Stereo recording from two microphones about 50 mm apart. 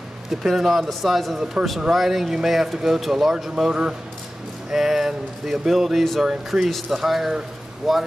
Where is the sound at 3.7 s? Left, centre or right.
Centre.